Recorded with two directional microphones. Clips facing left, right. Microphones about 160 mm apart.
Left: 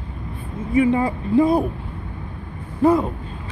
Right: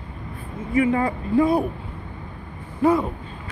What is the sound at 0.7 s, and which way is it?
Speech, 25° left (ahead or behind).